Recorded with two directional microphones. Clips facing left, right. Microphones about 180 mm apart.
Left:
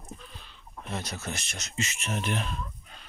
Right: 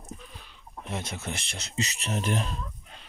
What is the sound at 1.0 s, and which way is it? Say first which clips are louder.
Speech: right 1 dB; 25° right (ahead or behind).